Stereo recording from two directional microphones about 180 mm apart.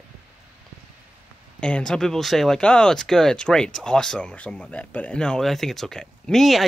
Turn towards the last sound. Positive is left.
turn(degrees=0)  # may be behind; listen again after turning